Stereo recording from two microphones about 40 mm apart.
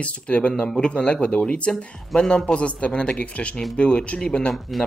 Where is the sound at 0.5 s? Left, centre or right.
Left.